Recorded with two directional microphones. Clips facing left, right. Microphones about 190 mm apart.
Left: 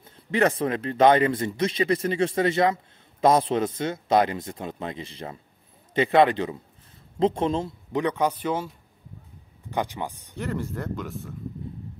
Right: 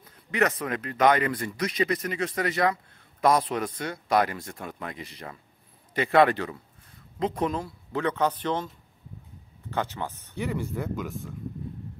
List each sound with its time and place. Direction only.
0.0 s speech: 30° left (ahead or behind)
10.3 s speech: centre (ahead or behind)